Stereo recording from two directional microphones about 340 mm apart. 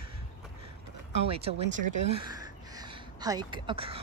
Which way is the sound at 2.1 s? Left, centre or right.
Centre.